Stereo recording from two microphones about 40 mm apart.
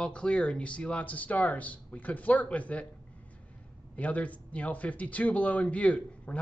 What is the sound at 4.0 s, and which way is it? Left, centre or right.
Speech, left.